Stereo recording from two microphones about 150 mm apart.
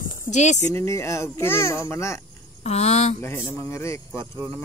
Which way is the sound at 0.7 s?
20° left (ahead or behind).